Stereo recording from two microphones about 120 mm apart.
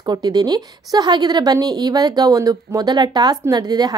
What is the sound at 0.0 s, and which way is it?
A woman's voice, 35° right (ahead or behind).